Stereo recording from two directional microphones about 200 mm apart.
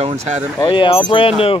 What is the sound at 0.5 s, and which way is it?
Speech, 25° left (ahead or behind).